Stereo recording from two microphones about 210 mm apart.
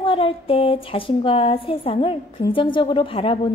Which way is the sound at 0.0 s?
25° left (ahead or behind).